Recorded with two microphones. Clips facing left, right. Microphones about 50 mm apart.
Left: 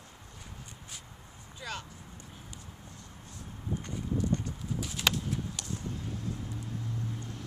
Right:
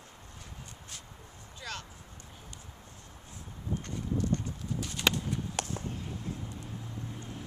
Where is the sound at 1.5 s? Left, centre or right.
Centre.